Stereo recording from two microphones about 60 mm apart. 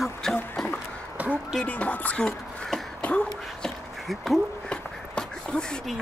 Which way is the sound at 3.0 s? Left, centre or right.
Left.